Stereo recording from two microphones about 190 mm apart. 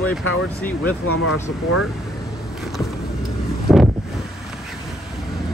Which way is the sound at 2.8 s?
Centre (ahead or behind).